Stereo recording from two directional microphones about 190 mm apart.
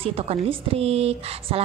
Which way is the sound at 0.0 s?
30° right (ahead or behind).